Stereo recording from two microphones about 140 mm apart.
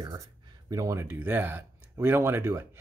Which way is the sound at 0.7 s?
20° right (ahead or behind).